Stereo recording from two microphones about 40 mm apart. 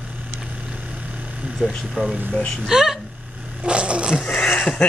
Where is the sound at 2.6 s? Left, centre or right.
Centre.